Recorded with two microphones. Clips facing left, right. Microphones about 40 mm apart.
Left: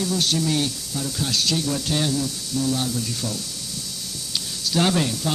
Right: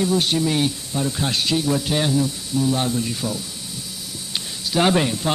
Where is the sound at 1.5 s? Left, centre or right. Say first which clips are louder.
Right 3 dB; centre.